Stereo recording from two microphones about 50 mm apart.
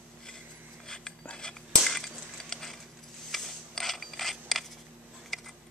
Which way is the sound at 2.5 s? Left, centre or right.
Centre.